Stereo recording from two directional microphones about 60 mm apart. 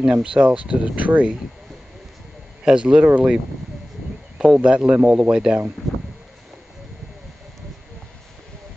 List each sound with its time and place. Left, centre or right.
0.0 s speech: centre
2.6 s speech: centre
4.4 s speech: centre